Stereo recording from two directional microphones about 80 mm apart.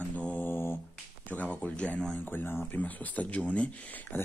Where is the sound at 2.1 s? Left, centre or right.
Left.